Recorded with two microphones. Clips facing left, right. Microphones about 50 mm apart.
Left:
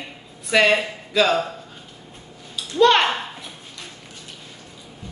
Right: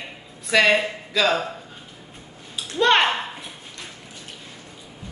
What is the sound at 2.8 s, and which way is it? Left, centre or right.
Speech, centre.